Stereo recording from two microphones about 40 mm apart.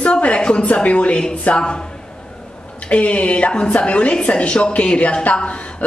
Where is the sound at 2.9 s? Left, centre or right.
Left.